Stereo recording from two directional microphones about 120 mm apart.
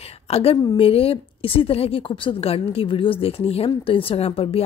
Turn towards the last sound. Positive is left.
turn(degrees=55)  # may be behind; listen again after turning